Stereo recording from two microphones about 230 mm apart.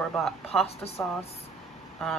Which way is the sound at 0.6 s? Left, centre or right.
Left.